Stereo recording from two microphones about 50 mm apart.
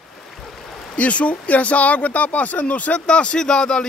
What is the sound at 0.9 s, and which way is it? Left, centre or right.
Speech, left.